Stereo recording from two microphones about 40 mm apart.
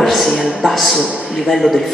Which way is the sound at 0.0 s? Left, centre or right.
Centre.